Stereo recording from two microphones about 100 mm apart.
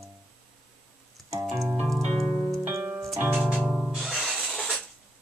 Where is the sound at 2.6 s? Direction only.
20° right (ahead or behind).